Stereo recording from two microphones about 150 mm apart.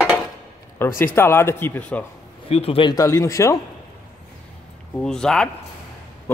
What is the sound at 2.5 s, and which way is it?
Speech, 40° left (ahead or behind).